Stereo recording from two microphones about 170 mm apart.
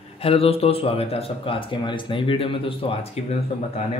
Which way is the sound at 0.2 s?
35° left (ahead or behind).